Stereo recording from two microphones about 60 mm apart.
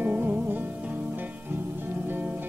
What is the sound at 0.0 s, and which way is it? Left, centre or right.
Music, right.